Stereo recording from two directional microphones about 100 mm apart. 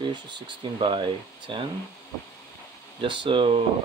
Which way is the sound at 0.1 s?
50° right (ahead or behind).